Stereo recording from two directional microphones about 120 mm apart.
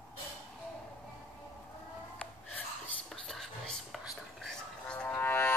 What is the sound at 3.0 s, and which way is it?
Whispering, centre (ahead or behind).